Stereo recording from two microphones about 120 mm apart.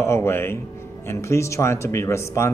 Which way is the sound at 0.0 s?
20° left (ahead or behind).